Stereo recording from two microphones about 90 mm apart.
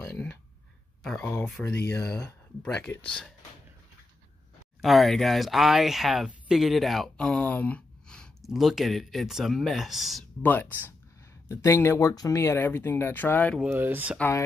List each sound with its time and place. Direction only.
1.4 s speech: 20° left (ahead or behind)
4.8 s speech: centre (ahead or behind)
8.5 s speech: centre (ahead or behind)
10.4 s speech: 20° left (ahead or behind)
11.4 s speech: 30° left (ahead or behind)
12.1 s speech: 45° left (ahead or behind)
12.5 s speech: 25° left (ahead or behind)
13.7 s speech: 20° right (ahead or behind)